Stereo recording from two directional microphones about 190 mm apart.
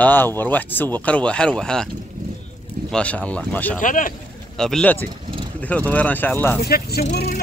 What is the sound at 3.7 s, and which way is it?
Speech, 45° left (ahead or behind).